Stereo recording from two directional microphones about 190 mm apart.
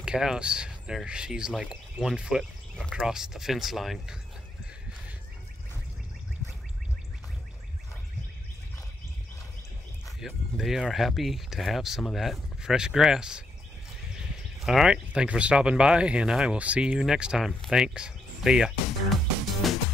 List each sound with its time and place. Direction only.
0.0 s speech: 5° right (ahead or behind)
10.2 s speech: centre (ahead or behind)
14.6 s speech: centre (ahead or behind)
19.6 s music: centre (ahead or behind)